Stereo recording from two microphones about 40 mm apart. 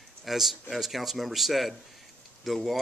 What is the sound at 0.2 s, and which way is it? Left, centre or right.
Speech, centre.